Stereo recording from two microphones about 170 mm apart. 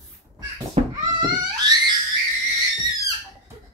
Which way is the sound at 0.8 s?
35° right (ahead or behind).